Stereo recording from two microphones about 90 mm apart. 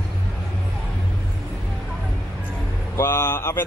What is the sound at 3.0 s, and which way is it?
Speech, 25° left (ahead or behind).